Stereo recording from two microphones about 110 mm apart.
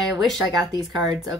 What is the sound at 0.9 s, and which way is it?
Speech, 40° right (ahead or behind).